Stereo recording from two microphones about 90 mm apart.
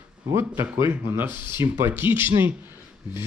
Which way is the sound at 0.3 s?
30° right (ahead or behind).